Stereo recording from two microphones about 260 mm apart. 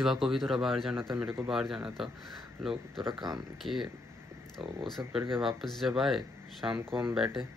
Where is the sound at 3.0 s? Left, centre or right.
Centre.